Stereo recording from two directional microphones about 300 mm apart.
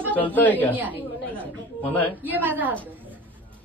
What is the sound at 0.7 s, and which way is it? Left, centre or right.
Speech, centre.